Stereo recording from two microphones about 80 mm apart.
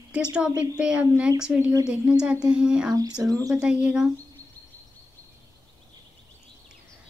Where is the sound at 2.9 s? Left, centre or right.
Right.